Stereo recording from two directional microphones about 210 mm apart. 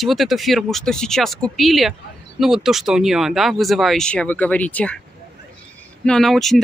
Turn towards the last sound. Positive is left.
turn(degrees=0)  # may be behind; listen again after turning